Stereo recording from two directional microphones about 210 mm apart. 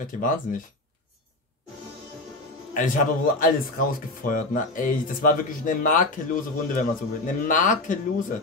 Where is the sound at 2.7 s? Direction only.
40° left (ahead or behind).